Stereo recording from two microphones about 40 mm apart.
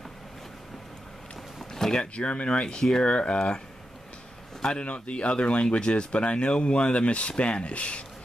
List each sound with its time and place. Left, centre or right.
2.1 s speech: left
4.8 s speech: left